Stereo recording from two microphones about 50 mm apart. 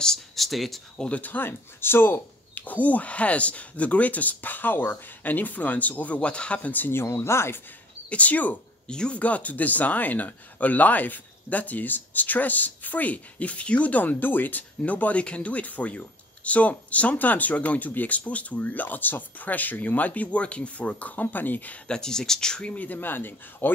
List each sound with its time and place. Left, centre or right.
0.4 s speech: centre
0.9 s speech: left
1.2 s speech: left
6.7 s speech: left
8.1 s speech: left
8.8 s speech: centre
9.2 s speech: left
21.8 s speech: centre
22.8 s speech: left